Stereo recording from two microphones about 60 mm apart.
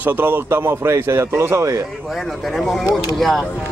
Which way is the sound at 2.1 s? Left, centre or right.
Centre.